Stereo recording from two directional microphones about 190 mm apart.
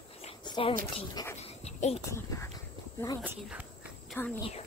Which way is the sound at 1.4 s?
35° left (ahead or behind).